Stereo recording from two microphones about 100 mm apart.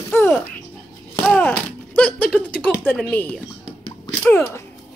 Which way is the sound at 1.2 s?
10° left (ahead or behind).